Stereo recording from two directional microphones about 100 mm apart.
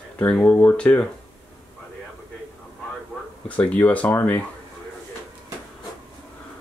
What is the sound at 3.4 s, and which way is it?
Speech, 15° left (ahead or behind).